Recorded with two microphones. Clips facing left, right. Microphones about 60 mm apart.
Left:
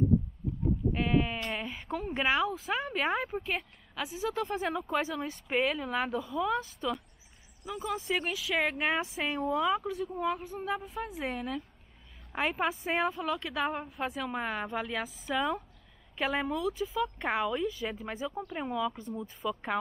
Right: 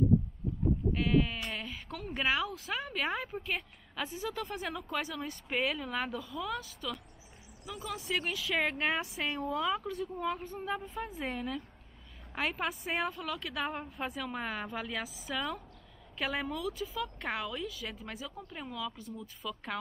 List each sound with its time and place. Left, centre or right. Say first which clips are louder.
0.9 s a woman's voice: left 1 dB; centre
1.4 s a woman's voice: left 4 dB; centre
6.1 s a woman's voice: left 6 dB; left; by 15.3 s centre
15.3 s a woman's voice: left 6 dB; centre
18.1 s speech: left 7 dB; left